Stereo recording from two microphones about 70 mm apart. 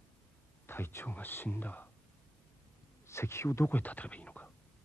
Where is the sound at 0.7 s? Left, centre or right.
Left.